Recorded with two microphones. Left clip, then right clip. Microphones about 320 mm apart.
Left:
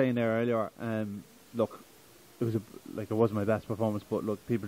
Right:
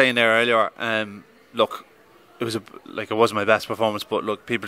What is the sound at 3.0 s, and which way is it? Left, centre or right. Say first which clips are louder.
A man's voice: right 9 dB; centre.